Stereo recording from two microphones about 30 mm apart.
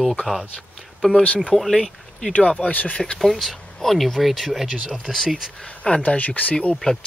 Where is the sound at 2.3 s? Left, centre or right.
Left.